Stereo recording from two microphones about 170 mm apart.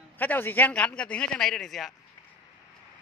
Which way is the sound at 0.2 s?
10° left (ahead or behind).